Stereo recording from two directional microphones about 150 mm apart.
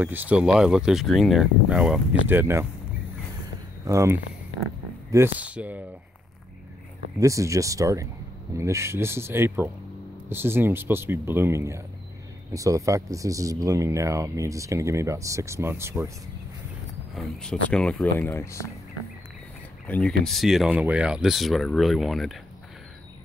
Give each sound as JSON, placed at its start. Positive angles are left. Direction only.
{"t": 0.0, "sound": "speech", "side_deg": -10}
{"t": 3.8, "sound": "speech", "side_deg": -20}
{"t": 7.2, "sound": "speech", "side_deg": -20}
{"t": 17.1, "sound": "speech", "side_deg": 5}
{"t": 18.2, "sound": "speech", "side_deg": 20}
{"t": 19.9, "sound": "speech", "side_deg": 5}